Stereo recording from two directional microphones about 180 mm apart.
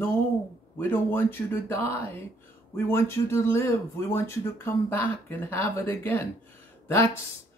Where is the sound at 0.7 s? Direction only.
10° left (ahead or behind).